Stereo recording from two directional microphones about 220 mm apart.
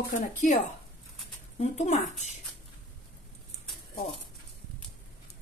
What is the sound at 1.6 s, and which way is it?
Speech, 30° left (ahead or behind).